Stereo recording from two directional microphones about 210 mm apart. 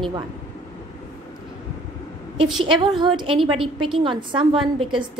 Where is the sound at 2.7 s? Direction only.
25° right (ahead or behind).